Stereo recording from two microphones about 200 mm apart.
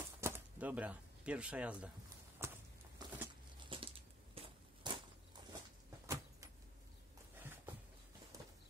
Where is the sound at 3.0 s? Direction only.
20° right (ahead or behind).